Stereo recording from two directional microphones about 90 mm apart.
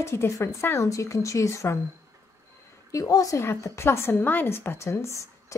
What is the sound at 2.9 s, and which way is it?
A woman's voice, 40° left (ahead or behind).